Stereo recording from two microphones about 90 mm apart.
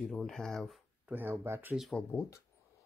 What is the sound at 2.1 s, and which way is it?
Speech, 35° left (ahead or behind).